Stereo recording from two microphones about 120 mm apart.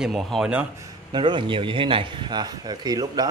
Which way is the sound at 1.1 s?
40° right (ahead or behind).